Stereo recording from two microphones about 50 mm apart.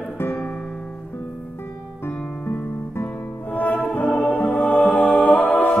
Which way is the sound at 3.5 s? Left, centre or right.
Left.